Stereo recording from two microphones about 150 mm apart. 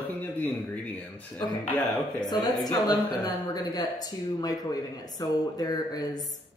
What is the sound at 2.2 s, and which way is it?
Speech, 25° left (ahead or behind).